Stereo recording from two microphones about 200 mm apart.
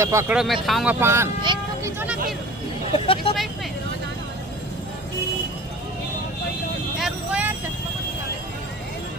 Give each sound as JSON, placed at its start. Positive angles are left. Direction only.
{"t": 0.0, "sound": "speech", "side_deg": -15}
{"t": 0.4, "sound": "speech", "side_deg": 0}
{"t": 0.9, "sound": "speech", "side_deg": -15}
{"t": 2.9, "sound": "speech", "side_deg": 25}
{"t": 7.0, "sound": "vehicle", "side_deg": -5}